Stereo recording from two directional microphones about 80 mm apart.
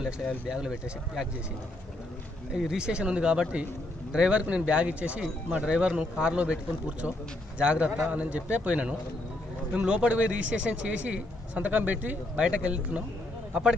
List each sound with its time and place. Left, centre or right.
0.5 s a man's voice: centre
2.5 s a man's voice: centre